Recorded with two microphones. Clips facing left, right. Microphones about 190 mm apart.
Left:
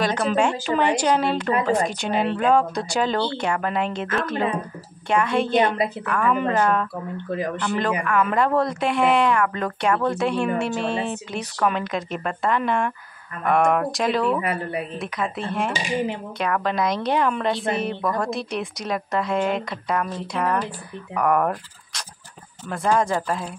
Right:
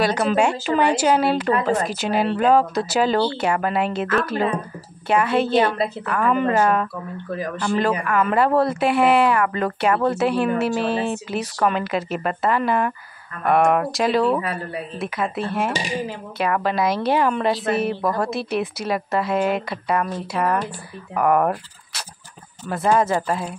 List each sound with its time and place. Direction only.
0.0 s speech: 5° right (ahead or behind)
8.0 s speech: 5° right (ahead or behind)
14.4 s speech: 20° left (ahead or behind)
15.0 s speech: 5° right (ahead or behind)